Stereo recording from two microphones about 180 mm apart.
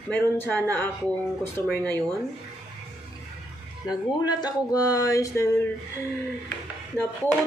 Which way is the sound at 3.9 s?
20° left (ahead or behind).